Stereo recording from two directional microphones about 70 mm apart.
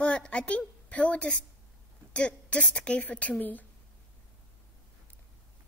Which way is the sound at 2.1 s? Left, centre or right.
Centre.